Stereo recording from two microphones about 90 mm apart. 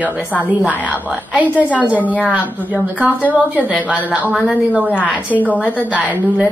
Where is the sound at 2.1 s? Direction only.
15° left (ahead or behind).